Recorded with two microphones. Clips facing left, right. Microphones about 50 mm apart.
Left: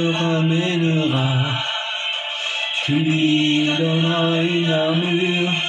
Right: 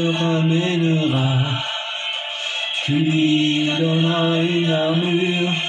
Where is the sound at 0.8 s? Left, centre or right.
Left.